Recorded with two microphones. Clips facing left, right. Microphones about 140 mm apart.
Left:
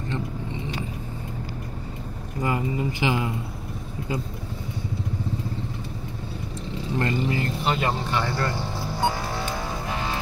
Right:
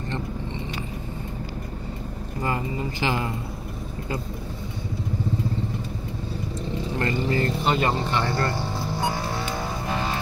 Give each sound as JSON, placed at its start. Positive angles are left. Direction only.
{"t": 2.4, "sound": "speech", "side_deg": 15}
{"t": 7.0, "sound": "vehicle", "side_deg": 15}
{"t": 7.6, "sound": "speech", "side_deg": 5}